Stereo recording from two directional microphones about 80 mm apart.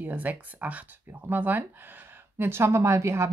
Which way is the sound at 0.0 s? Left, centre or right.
Right.